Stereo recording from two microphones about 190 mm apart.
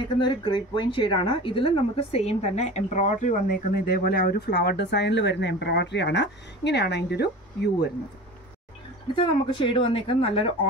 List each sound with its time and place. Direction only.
0.2 s speech: 25° left (ahead or behind); by 7.9 s 60° left (ahead or behind)
9.1 s speech: 25° left (ahead or behind)